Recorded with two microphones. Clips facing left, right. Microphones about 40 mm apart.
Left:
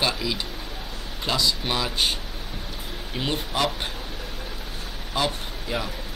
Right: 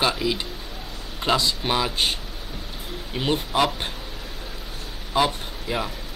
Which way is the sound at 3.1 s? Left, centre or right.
Centre.